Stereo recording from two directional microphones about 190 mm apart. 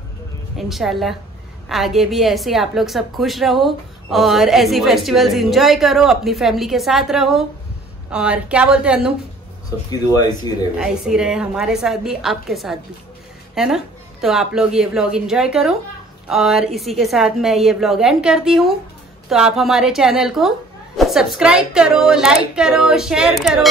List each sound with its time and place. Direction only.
0.6 s a woman's voice: centre (ahead or behind)
9.8 s speech: 20° left (ahead or behind)
10.8 s a woman's voice: 5° right (ahead or behind)